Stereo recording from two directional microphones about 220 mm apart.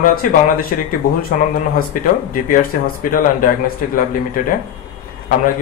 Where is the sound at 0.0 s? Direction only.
40° left (ahead or behind).